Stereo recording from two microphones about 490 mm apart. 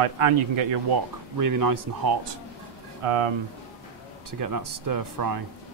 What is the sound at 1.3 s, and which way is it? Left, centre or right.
Speech, right.